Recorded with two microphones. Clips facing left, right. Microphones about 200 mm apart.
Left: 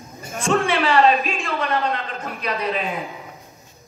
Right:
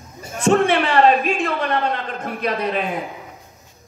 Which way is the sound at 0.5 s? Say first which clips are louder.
Right 1 dB; 60° right (ahead or behind).